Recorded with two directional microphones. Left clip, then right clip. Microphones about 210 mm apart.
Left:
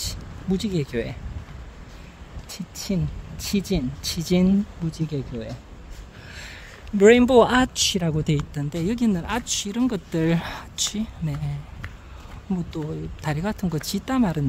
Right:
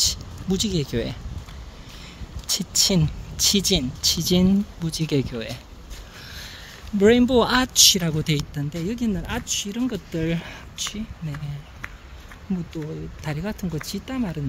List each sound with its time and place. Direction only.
0.0 s a sound: 5° right (ahead or behind)
2.4 s speech: 15° right (ahead or behind)
4.0 s speech: centre (ahead or behind)
4.9 s speech: 20° right (ahead or behind)
6.3 s a sound: 10° left (ahead or behind)
7.4 s speech: 10° left (ahead or behind)
8.7 s speech: 15° left (ahead or behind)
12.7 s speech: 10° left (ahead or behind)